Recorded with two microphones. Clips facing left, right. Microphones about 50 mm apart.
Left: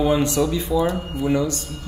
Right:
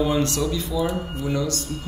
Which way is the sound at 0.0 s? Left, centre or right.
Centre.